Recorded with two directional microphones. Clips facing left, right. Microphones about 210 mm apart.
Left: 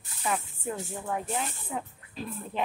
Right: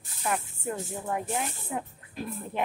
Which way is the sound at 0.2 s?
Centre (ahead or behind).